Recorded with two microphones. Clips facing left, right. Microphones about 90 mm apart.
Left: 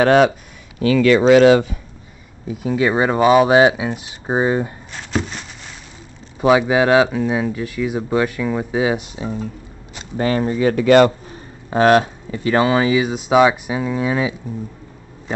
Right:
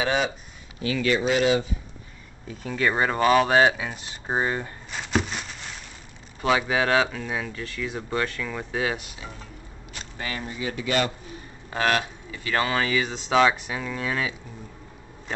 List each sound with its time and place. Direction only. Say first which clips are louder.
0.0 s speech: left 12 dB; 60° left (ahead or behind)
0.7 s speech: left 11 dB; 90° left
2.4 s speech: left 7 dB; 10° left (ahead or behind)
4.9 s a sound: left 2 dB; centre (ahead or behind)
6.4 s speech: left 9 dB; 20° left (ahead or behind)
10.1 s speech: left 15 dB; 40° left (ahead or behind)
11.7 s speech: left 11 dB; 30° left (ahead or behind)
12.5 s speech: left 8 dB; 20° left (ahead or behind)